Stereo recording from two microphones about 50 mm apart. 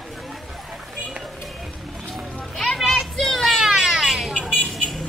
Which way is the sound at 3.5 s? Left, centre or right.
Centre.